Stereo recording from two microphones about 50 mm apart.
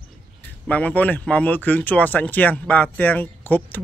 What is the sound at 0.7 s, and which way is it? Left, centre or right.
Speech, left.